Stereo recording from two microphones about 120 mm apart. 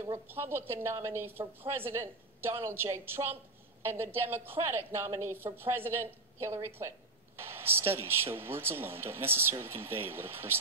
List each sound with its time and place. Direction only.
0.0 s a woman's voice: 20° right (ahead or behind)